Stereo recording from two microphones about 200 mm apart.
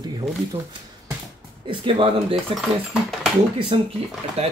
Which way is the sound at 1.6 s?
25° right (ahead or behind).